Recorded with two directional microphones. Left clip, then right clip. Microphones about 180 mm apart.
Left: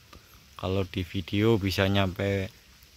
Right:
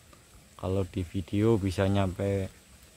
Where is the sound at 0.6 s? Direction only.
5° left (ahead or behind).